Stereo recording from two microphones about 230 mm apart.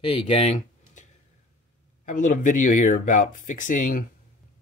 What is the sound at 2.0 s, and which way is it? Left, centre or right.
Speech, left.